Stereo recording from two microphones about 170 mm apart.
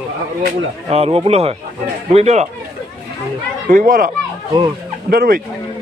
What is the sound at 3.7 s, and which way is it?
Speech, 50° right (ahead or behind).